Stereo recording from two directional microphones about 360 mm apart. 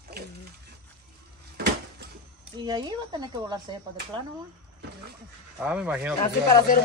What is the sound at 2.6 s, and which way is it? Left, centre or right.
Speech, centre.